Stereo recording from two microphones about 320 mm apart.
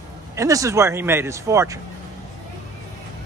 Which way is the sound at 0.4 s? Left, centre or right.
Centre.